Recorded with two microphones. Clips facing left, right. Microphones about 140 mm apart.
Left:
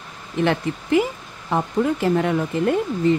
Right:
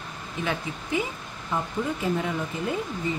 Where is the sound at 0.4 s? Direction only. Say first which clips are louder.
Left 9 dB; 70° left (ahead or behind).